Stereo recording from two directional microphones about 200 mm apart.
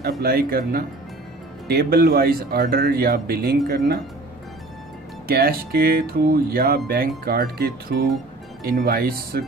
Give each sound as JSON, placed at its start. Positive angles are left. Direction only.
{"t": 0.2, "sound": "speech", "side_deg": -50}
{"t": 5.3, "sound": "speech", "side_deg": -50}